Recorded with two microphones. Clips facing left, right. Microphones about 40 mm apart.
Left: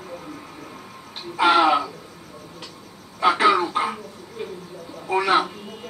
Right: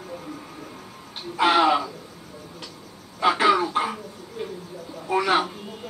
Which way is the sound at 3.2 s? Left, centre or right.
Centre.